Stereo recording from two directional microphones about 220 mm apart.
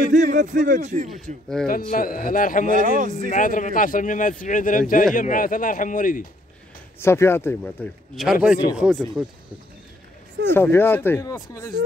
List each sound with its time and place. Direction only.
0.1 s a sound: 35° right (ahead or behind)
0.6 s speech: 35° right (ahead or behind)
1.2 s speech: centre (ahead or behind)
1.7 s a man's voice: 40° left (ahead or behind)
2.7 s speech: 35° right (ahead or behind)
3.3 s a man's voice: 35° left (ahead or behind)
7.0 s speech: 10° left (ahead or behind)
10.5 s speech: 10° left (ahead or behind)